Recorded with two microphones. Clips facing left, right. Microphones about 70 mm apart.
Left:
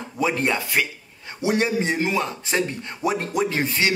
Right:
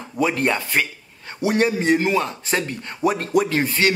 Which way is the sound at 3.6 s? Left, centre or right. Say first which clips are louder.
Right 3 dB; right.